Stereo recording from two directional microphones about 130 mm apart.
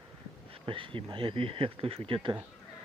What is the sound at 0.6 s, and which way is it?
Speech, 40° right (ahead or behind).